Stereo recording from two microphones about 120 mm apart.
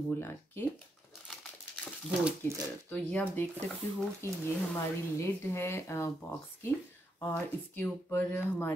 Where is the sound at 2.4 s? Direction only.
20° left (ahead or behind).